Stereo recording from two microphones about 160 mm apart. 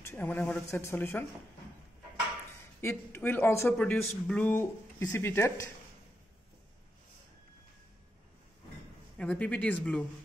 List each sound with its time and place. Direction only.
0.0 s speech: 10° left (ahead or behind)
2.8 s speech: 15° left (ahead or behind)
3.7 s speech: 5° left (ahead or behind)
9.2 s speech: 10° left (ahead or behind)